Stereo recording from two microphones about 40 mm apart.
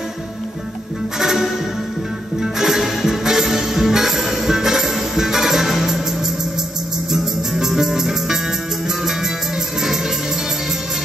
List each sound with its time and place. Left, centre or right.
1.2 s music: centre
7.1 s music: centre